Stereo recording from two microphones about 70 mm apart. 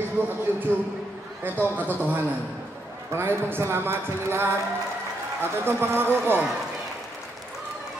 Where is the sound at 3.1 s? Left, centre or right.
Right.